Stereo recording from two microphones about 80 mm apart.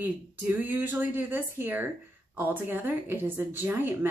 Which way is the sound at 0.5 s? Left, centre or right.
Right.